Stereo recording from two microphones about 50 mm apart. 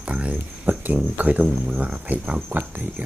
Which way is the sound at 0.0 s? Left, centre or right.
Right.